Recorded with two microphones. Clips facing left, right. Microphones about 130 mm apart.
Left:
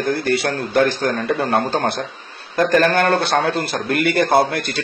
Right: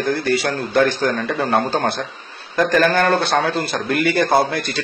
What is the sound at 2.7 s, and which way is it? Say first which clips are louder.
Speech: left 1 dB; 40° left (ahead or behind).